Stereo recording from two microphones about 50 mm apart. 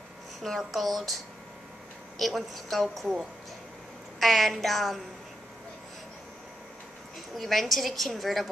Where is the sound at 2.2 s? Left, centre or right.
Centre.